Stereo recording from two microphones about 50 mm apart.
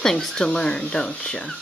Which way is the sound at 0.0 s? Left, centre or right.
Centre.